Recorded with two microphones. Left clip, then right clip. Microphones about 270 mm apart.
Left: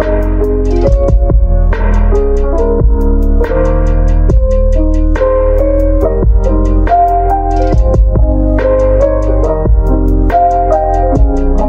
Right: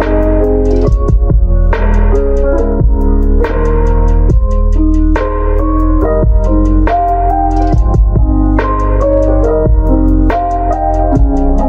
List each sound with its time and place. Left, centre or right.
0.0 s music: left
2.1 s music: left
6.9 s music: left